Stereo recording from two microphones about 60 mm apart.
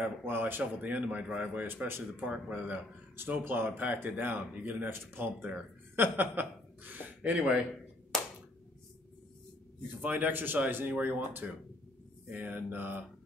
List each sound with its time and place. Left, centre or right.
0.0 s a man's voice: right
2.2 s a man's voice: right
3.2 s speech: right
7.2 s speech: right
8.1 s a sound: centre
10.0 s speech: right